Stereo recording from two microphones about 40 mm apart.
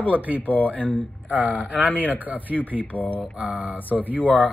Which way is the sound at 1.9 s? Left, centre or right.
Left.